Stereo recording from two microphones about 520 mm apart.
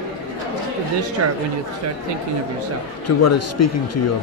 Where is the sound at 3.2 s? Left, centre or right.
Left.